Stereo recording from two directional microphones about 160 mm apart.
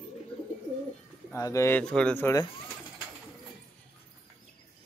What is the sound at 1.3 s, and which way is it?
Speech, 20° left (ahead or behind).